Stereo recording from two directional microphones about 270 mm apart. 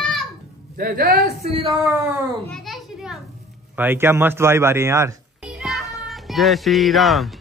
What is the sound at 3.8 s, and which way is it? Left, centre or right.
Speech, centre.